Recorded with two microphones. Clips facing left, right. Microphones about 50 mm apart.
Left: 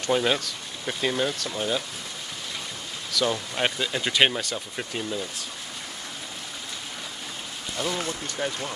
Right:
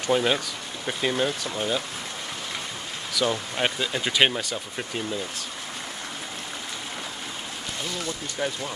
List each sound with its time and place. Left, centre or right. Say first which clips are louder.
0.0 s speech: right 1 dB; centre
3.1 s speech: even; centre
8.4 s speech: right 1 dB; centre